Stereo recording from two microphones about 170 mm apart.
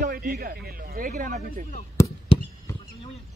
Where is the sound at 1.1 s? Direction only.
50° right (ahead or behind).